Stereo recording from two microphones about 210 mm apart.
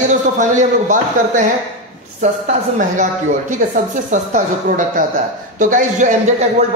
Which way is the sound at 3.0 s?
35° right (ahead or behind).